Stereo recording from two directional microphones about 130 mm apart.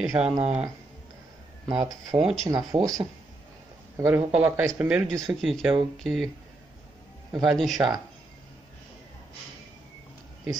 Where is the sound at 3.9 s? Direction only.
15° right (ahead or behind).